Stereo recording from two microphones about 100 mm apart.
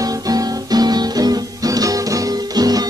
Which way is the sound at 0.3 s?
40° right (ahead or behind).